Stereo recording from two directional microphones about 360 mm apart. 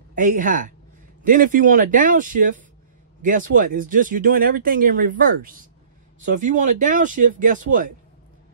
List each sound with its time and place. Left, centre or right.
0.1 s speech: right